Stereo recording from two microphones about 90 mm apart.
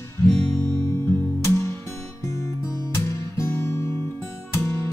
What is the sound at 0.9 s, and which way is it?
Music, 30° left (ahead or behind).